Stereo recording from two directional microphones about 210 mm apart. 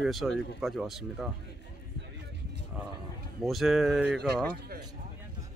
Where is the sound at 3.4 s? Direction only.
Centre (ahead or behind).